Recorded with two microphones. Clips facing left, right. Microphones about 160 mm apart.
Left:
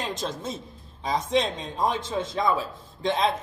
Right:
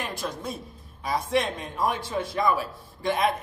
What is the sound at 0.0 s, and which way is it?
Speech, 20° left (ahead or behind).